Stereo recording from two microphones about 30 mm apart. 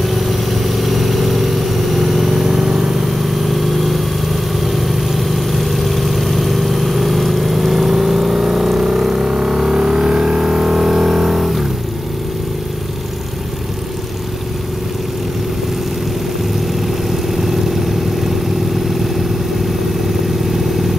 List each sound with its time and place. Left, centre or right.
0.0 s vehicle: centre
3.4 s vehicle: centre